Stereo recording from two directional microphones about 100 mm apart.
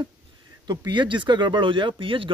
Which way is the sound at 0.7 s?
50° right (ahead or behind).